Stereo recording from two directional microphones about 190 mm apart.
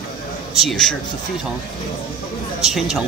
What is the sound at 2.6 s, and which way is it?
Speech, centre (ahead or behind).